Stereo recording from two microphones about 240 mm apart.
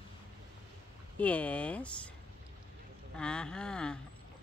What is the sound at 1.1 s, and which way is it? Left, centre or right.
Speech, centre.